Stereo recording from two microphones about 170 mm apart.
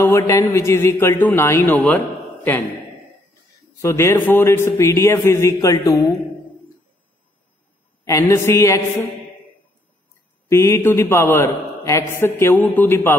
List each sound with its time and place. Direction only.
0.0 s a man's voice: 15° left (ahead or behind)
3.7 s a man's voice: 15° left (ahead or behind)
8.0 s a man's voice: 20° left (ahead or behind)
10.5 s a man's voice: 15° left (ahead or behind)